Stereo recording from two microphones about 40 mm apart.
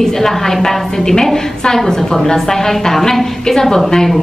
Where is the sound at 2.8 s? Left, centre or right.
Centre.